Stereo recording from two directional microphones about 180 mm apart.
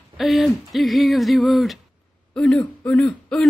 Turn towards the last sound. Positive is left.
turn(degrees=5)  # may be behind; listen again after turning